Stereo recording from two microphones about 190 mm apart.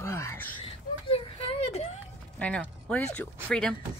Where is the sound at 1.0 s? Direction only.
30° left (ahead or behind).